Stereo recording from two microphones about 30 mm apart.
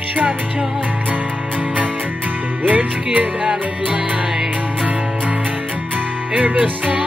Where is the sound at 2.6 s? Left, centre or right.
Right.